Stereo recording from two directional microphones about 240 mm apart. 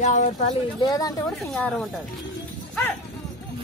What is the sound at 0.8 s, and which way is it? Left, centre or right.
Speech, centre.